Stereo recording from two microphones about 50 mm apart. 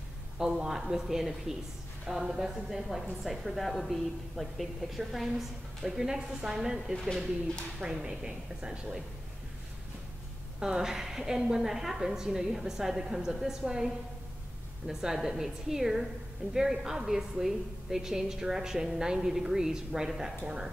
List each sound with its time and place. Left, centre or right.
0.4 s a woman's voice: centre
10.6 s a woman's voice: centre